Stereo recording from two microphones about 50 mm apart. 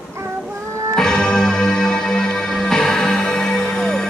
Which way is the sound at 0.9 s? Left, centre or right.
Centre.